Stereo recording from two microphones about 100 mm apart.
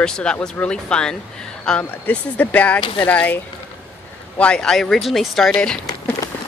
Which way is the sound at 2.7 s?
50° left (ahead or behind).